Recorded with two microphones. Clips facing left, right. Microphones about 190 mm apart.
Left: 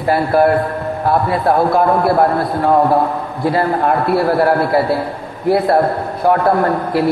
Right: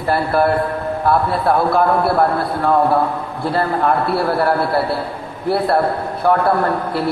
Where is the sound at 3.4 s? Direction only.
15° left (ahead or behind).